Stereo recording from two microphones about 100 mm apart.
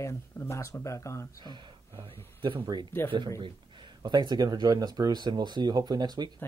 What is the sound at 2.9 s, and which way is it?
Speech, 25° left (ahead or behind).